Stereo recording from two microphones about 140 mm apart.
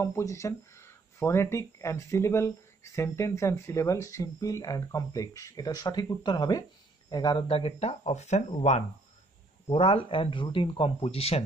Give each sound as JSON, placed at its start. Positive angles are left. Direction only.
{"t": 0.0, "sound": "speech", "side_deg": 20}